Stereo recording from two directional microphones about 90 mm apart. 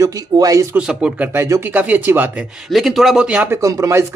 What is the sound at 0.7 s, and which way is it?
Speech, 10° right (ahead or behind).